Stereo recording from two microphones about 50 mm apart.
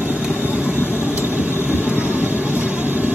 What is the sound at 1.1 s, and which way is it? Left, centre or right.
Vehicle, right.